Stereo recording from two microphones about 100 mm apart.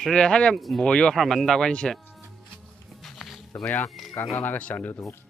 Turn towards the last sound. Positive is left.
turn(degrees=15)  # may be behind; listen again after turning